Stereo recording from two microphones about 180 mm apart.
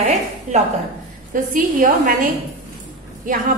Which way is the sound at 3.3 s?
45° right (ahead or behind).